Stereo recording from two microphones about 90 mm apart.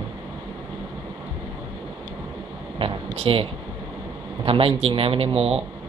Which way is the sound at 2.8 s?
75° right (ahead or behind).